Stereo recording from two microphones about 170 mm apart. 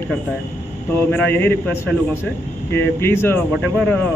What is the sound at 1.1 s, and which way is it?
Speech, 10° left (ahead or behind).